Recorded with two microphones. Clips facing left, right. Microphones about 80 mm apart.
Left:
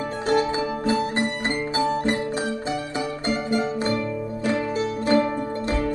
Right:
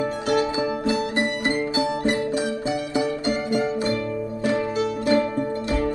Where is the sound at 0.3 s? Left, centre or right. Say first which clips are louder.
Left 1 dB; left.